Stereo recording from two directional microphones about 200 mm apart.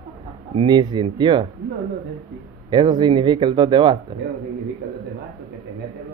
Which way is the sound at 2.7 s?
20° right (ahead or behind).